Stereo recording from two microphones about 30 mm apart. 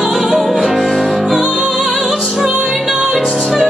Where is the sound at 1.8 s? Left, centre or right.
Centre.